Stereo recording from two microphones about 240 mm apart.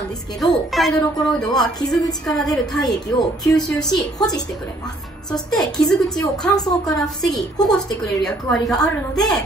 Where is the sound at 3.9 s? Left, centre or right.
Centre.